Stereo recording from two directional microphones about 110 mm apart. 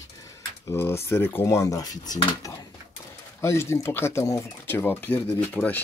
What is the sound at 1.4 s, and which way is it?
Speech, 30° left (ahead or behind).